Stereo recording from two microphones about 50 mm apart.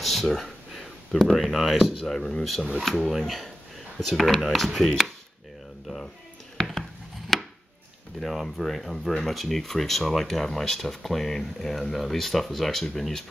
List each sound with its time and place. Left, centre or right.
0.0 s a sound: centre
2.0 s speech: centre
6.6 s chopping: centre
8.2 s speech: centre